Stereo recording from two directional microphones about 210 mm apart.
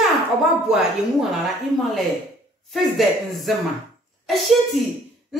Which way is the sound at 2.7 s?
Centre (ahead or behind).